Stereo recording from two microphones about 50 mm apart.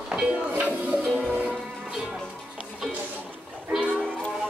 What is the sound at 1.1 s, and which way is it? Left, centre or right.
Music, left.